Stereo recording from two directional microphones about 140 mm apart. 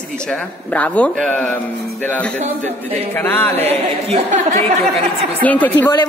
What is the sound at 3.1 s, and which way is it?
Speech, 15° left (ahead or behind).